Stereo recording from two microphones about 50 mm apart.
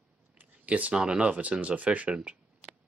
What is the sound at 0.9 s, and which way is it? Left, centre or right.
Speech, centre.